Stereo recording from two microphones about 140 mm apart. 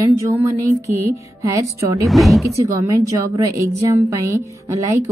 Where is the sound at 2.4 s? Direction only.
20° right (ahead or behind).